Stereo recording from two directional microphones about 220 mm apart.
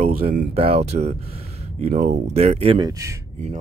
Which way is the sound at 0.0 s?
40° right (ahead or behind).